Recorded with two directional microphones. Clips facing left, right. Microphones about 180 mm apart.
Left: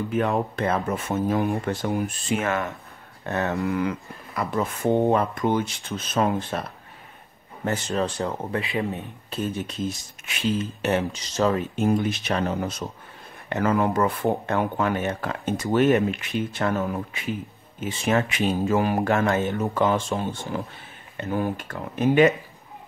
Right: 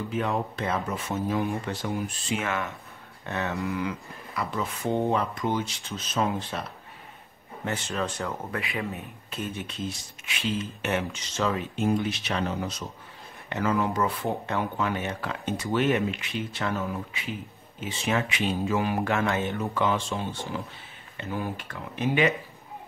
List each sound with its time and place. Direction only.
0.1 s speech: 55° left (ahead or behind)
7.6 s speech: 40° left (ahead or behind)